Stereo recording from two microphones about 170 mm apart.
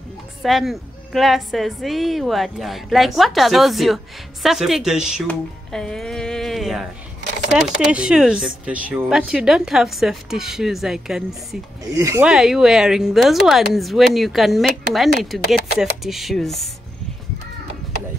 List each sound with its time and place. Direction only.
0.4 s a woman's voice: centre (ahead or behind)
12.0 s speech: 20° right (ahead or behind)
12.3 s a woman's voice: 5° right (ahead or behind)